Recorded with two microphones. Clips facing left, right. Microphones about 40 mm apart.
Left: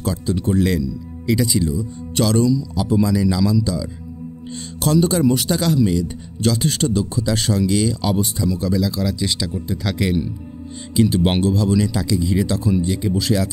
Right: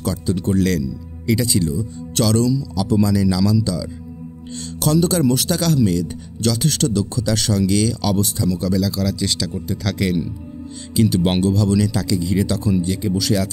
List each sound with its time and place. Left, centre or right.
0.0 s a man's voice: centre
2.7 s speech: left
3.1 s a man's voice: centre
11.2 s a man's voice: centre